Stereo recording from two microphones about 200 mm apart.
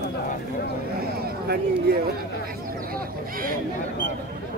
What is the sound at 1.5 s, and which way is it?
Speech, 55° right (ahead or behind).